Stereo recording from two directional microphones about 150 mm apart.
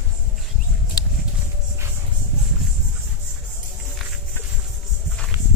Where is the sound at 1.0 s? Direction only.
25° left (ahead or behind).